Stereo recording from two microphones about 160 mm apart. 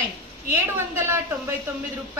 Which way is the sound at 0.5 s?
15° right (ahead or behind).